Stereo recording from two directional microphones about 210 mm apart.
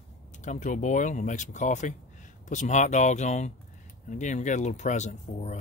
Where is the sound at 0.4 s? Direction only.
35° left (ahead or behind).